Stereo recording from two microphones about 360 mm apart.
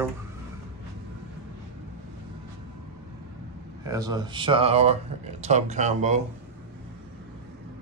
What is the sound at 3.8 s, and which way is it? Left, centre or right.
A man's voice, centre.